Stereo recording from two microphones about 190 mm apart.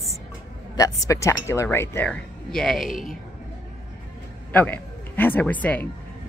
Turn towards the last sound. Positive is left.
turn(degrees=10)  # may be behind; listen again after turning